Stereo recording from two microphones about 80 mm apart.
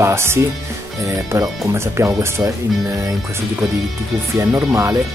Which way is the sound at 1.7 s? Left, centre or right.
Right.